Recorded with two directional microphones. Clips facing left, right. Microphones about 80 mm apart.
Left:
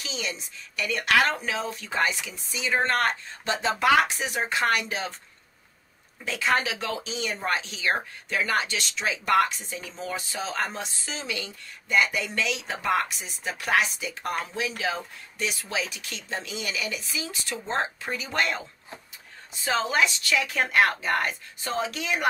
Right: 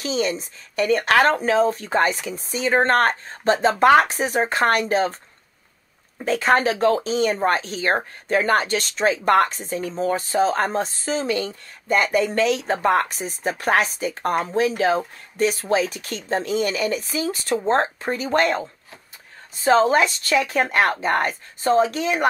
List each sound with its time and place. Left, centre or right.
0.0 s speech: right
6.1 s speech: right